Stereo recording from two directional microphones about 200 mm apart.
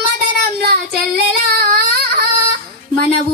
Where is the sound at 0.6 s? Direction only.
50° right (ahead or behind).